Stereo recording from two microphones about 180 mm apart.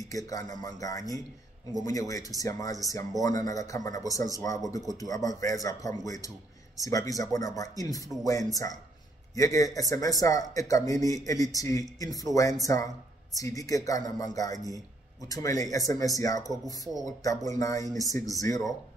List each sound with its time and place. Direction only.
0.1 s a man's voice: 20° left (ahead or behind)